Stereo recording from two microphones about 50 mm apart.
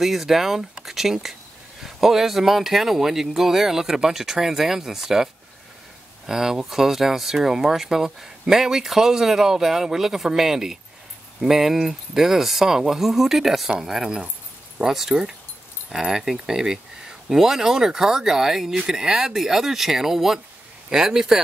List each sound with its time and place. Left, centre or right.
0.0 s speech: centre